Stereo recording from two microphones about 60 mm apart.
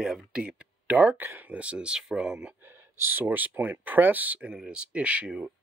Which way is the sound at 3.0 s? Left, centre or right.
Right.